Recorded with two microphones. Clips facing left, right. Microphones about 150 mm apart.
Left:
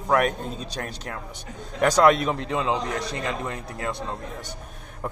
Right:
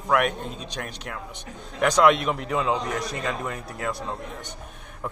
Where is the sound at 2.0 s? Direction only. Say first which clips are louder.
Even; 40° left (ahead or behind).